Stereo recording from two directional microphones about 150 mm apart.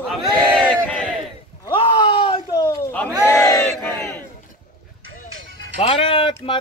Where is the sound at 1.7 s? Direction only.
35° left (ahead or behind).